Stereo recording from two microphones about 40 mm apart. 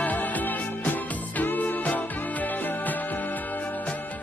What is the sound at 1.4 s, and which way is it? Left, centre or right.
Music, left.